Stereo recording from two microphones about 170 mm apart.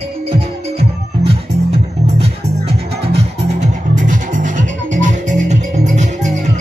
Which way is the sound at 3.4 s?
50° right (ahead or behind).